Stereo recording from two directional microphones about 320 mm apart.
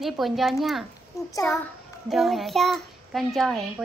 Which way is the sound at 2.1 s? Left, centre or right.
Centre.